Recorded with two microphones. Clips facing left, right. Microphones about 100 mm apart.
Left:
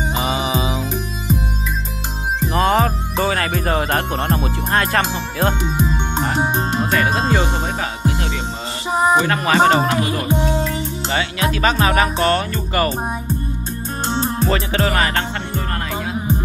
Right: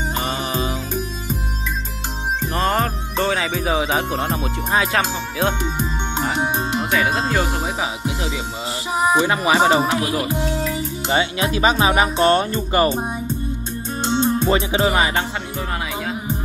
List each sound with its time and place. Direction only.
0.1 s music: 5° left (ahead or behind)
2.4 s music: centre (ahead or behind)
6.9 s speech: 5° right (ahead or behind)
11.1 s speech: 20° right (ahead or behind)
14.0 s music: 45° left (ahead or behind)
14.5 s music: 15° right (ahead or behind)